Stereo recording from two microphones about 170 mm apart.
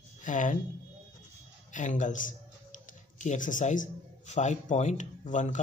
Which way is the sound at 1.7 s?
45° left (ahead or behind).